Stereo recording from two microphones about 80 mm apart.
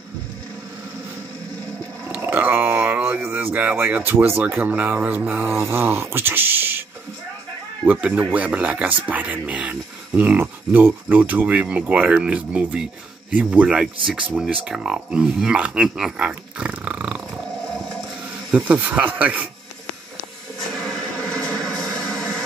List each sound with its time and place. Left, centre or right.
2.1 s a sound: right
4.6 s speech: right
7.8 s speech: right
18.7 s speech: right
21.2 s music: centre